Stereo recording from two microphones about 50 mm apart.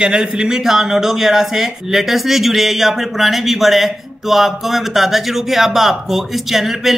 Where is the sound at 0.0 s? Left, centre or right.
Centre.